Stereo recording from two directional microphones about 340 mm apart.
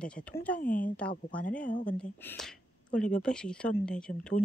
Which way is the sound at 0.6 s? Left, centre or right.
Left.